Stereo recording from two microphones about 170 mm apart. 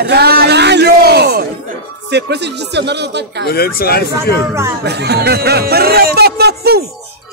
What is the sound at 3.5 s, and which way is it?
Speech, 65° left (ahead or behind).